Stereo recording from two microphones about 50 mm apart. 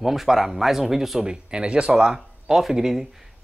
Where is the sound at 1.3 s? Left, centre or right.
Centre.